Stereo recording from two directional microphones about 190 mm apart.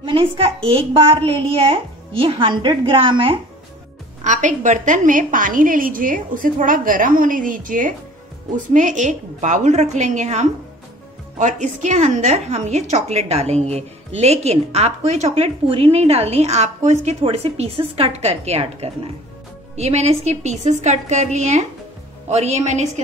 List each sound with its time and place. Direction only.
0.0 s a woman's voice: 25° right (ahead or behind)
4.2 s a woman's voice: 40° right (ahead or behind)